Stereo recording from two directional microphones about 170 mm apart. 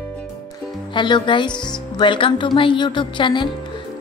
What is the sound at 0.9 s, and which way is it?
Speech, 25° left (ahead or behind).